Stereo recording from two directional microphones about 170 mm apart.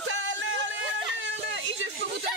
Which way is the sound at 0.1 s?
90° right.